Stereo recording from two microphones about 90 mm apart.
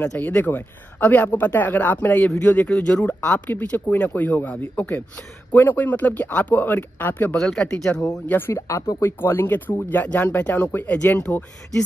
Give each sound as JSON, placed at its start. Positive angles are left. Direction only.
{"t": 0.0, "sound": "speech", "side_deg": 15}
{"t": 7.3, "sound": "speech", "side_deg": 5}
{"t": 8.3, "sound": "speech", "side_deg": 25}